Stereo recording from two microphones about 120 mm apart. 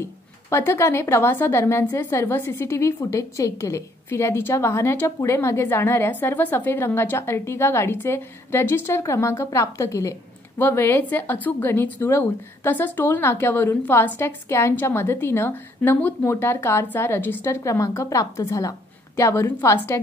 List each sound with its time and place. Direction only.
0.0 s a woman's voice: 20° left (ahead or behind)